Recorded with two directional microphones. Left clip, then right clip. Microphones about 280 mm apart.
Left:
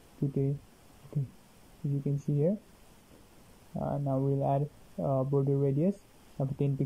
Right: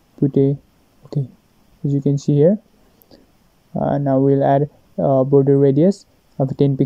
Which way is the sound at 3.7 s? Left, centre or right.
Right.